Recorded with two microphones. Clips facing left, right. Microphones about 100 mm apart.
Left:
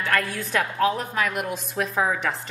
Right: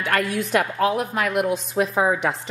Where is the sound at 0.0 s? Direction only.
15° right (ahead or behind).